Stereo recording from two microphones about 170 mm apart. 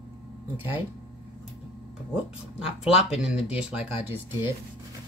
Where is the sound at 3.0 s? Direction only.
5° right (ahead or behind).